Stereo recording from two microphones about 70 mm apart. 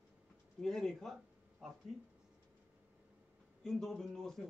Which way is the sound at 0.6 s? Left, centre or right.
Centre.